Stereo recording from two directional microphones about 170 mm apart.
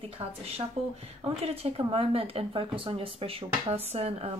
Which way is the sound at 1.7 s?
35° right (ahead or behind).